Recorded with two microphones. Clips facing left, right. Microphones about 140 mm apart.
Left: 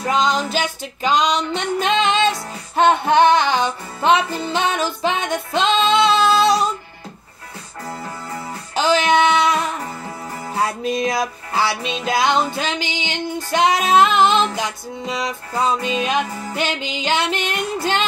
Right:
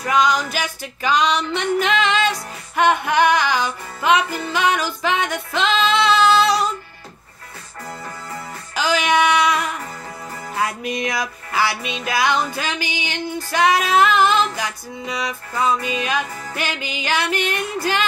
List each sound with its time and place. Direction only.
0.0 s music: 25° left (ahead or behind)
8.7 s music: 25° left (ahead or behind)